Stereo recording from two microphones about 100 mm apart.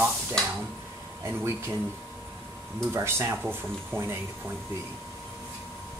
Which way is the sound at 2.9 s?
25° right (ahead or behind).